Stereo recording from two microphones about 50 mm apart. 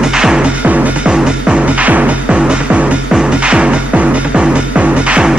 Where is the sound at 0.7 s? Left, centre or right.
Right.